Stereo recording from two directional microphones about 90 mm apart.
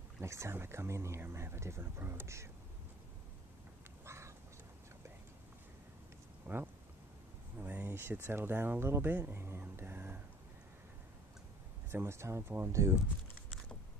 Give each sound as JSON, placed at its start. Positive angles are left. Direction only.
{"t": 0.2, "sound": "speech", "side_deg": -30}
{"t": 4.0, "sound": "duck", "side_deg": -30}
{"t": 6.4, "sound": "speech", "side_deg": -20}
{"t": 11.9, "sound": "speech", "side_deg": -30}